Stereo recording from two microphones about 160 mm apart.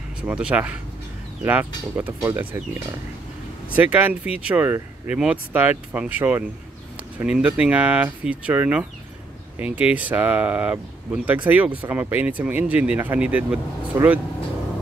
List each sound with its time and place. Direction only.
0.2 s speech: 10° right (ahead or behind)
3.7 s speech: 10° right (ahead or behind)